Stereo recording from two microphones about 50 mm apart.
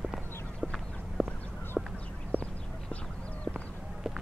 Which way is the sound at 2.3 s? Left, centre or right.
Left.